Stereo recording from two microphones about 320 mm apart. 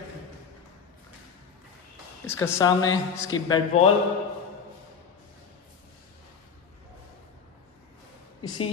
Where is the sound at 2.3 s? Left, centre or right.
Centre.